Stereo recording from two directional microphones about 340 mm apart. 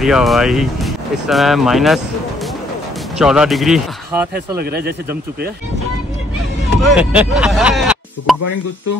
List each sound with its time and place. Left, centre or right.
0.0 s speech: centre
3.2 s speech: centre
4.6 s speech: right
6.8 s speech: centre